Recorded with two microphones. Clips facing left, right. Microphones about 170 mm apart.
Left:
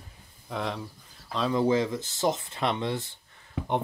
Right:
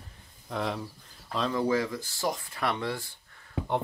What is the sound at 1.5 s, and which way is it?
Speech, 20° left (ahead or behind).